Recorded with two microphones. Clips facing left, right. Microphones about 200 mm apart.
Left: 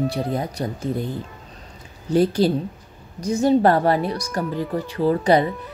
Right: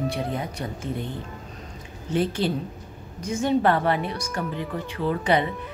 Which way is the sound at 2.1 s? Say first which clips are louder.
Left 6 dB; 40° left (ahead or behind).